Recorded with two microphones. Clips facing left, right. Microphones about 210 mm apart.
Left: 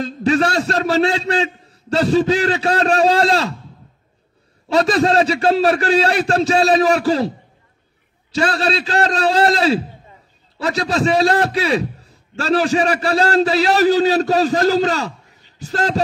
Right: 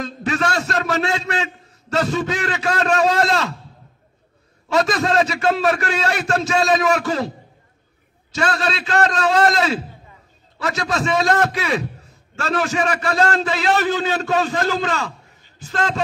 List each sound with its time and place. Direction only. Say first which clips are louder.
0.0 s a man's voice: left 6 dB; 30° left (ahead or behind)
4.6 s a man's voice: left 4 dB; 30° left (ahead or behind)